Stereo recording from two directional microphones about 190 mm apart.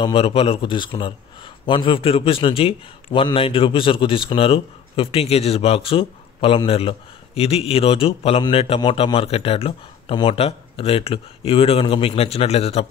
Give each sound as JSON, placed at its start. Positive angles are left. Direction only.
{"t": 0.0, "sound": "a man's voice", "side_deg": 30}